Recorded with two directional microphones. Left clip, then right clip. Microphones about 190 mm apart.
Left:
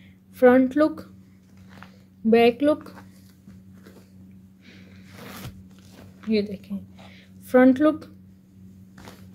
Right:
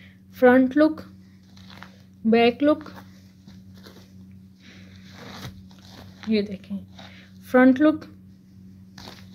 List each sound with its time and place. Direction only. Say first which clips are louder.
0.4 s a woman's voice: even; 10° left (ahead or behind)
2.2 s a woman's voice: left 1 dB; 10° left (ahead or behind)
4.7 s vehicle: even; 30° left (ahead or behind)
6.2 s a woman's voice: even; 10° left (ahead or behind)